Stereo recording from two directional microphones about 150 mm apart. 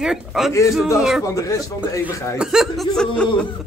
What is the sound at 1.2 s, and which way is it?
Speech, 20° left (ahead or behind).